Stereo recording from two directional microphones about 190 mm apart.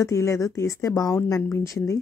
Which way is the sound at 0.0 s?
15° left (ahead or behind).